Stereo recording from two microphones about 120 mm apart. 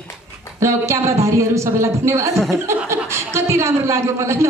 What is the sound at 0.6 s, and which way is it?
A woman's voice, 25° right (ahead or behind).